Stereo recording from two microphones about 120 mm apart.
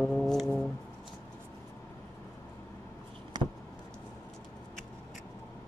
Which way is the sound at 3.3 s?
35° right (ahead or behind).